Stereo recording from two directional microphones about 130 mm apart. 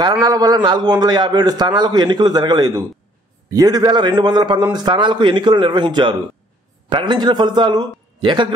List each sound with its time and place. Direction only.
0.0 s a man's voice: 30° right (ahead or behind)